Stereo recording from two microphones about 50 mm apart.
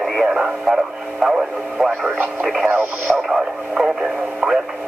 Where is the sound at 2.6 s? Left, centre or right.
Right.